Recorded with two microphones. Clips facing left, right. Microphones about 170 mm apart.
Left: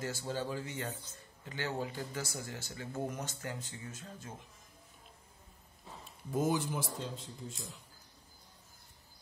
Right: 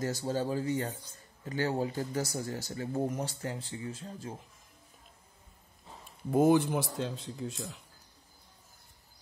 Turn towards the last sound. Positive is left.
turn(degrees=-85)